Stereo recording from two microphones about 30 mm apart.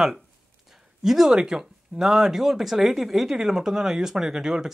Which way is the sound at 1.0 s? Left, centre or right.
Centre.